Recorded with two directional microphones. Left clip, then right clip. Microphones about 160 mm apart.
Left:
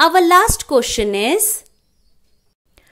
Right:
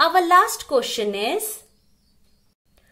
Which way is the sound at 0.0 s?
30° left (ahead or behind).